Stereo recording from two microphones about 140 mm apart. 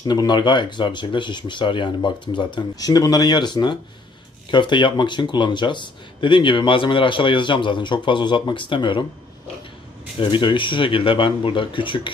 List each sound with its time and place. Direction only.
0.0 s speech: 30° left (ahead or behind)
10.3 s speech: 35° left (ahead or behind)